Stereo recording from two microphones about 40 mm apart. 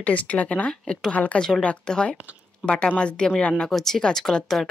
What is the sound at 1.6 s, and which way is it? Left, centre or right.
Speech, left.